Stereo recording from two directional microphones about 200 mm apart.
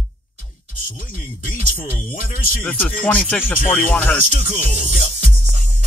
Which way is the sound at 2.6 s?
5° left (ahead or behind).